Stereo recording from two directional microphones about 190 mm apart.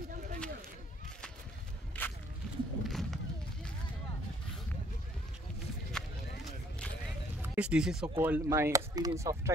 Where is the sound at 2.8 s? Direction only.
Centre (ahead or behind).